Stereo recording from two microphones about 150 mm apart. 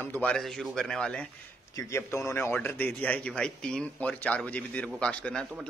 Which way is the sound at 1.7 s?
20° left (ahead or behind).